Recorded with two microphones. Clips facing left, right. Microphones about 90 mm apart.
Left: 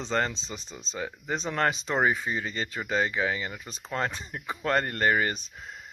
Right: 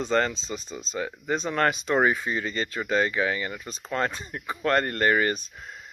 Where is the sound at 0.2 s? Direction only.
25° left (ahead or behind).